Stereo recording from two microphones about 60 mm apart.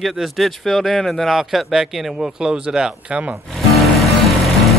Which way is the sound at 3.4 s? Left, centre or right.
Centre.